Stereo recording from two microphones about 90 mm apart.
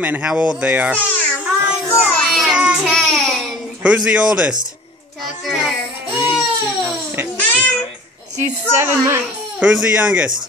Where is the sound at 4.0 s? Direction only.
10° right (ahead or behind).